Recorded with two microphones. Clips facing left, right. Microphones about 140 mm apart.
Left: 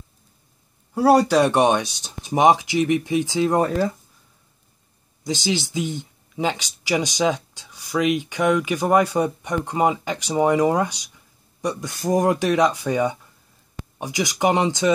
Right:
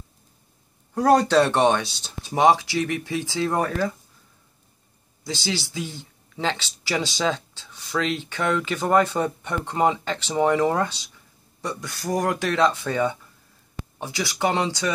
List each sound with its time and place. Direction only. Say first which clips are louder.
0.9 s speech: left 2 dB; 10° left (ahead or behind)
5.2 s speech: left 5 dB; 20° left (ahead or behind)